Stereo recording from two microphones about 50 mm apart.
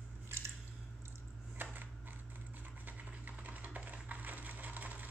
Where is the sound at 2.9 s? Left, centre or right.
Right.